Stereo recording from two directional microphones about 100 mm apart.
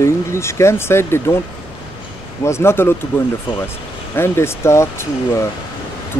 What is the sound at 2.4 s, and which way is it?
Speech, 25° left (ahead or behind).